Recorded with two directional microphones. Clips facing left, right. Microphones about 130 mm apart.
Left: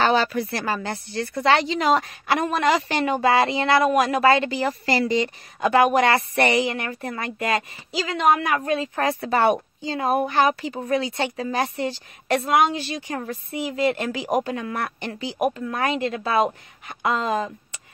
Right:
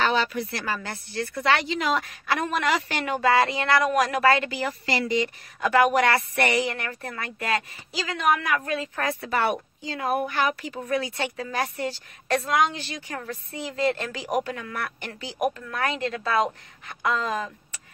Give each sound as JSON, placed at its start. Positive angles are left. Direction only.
{"t": 0.0, "sound": "speech", "side_deg": 40}
{"t": 0.6, "sound": "a woman's voice", "side_deg": 30}